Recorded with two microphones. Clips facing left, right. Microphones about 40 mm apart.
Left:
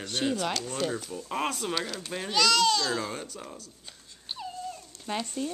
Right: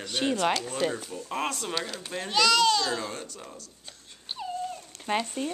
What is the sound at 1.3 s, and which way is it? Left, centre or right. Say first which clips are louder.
A child's voice: left 1 dB; centre.